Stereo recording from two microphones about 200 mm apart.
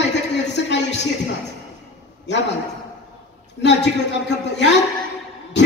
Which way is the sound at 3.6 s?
60° left (ahead or behind).